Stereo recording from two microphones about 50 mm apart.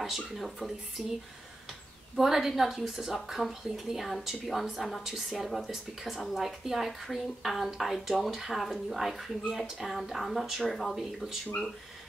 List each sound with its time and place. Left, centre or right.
0.0 s a woman's voice: centre